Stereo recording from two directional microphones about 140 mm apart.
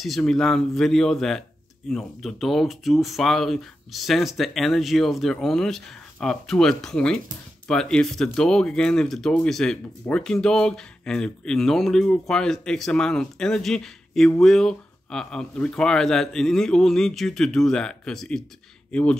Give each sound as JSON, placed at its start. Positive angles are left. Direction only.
{"t": 0.0, "sound": "speech", "side_deg": 0}